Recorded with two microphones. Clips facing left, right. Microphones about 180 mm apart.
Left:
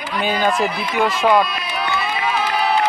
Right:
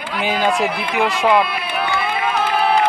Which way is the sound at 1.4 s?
60° right (ahead or behind).